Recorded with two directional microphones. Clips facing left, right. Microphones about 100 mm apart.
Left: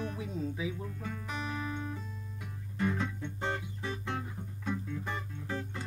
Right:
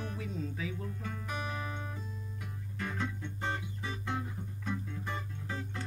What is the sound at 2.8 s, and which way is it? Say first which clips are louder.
Music: left 5 dB; 5° left (ahead or behind).